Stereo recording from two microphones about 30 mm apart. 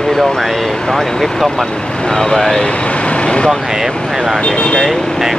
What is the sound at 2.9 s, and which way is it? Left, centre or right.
Vehicle, left.